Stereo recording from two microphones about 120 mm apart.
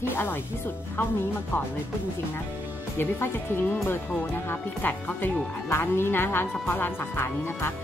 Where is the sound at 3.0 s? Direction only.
20° left (ahead or behind).